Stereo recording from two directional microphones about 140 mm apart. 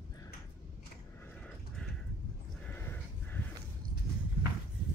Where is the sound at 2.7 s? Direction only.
15° left (ahead or behind).